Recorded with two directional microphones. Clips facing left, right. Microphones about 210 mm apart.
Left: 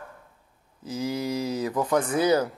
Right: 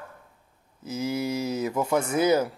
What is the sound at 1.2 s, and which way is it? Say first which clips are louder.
Speech: even; 25° right (ahead or behind).